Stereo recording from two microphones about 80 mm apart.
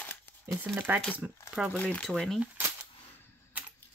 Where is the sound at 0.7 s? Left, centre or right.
Right.